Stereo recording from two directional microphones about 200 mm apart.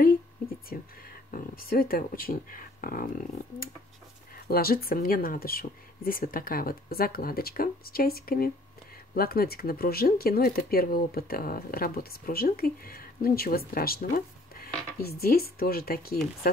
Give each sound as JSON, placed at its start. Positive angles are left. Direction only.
{"t": 0.7, "sound": "speech", "side_deg": 45}